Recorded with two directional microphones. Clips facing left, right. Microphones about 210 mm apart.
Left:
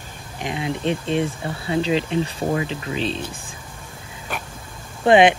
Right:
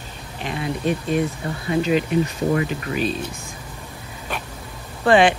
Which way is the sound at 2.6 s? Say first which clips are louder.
Right 2 dB; 25° left (ahead or behind).